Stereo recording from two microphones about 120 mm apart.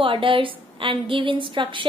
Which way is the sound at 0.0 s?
45° right (ahead or behind).